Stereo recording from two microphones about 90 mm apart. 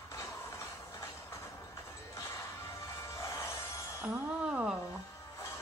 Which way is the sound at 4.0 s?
10° right (ahead or behind).